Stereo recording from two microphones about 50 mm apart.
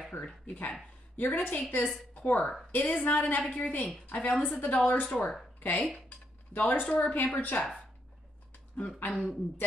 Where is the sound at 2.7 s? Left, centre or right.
Left.